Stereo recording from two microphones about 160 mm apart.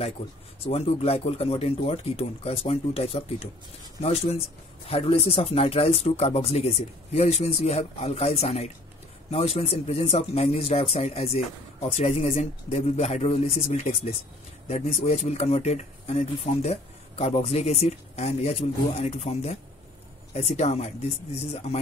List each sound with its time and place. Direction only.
0.7 s speech: 40° left (ahead or behind)